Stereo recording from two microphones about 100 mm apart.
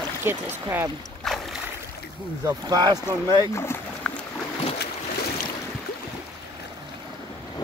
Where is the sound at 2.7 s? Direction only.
45° right (ahead or behind).